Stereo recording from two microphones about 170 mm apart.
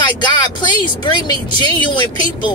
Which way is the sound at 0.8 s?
25° left (ahead or behind).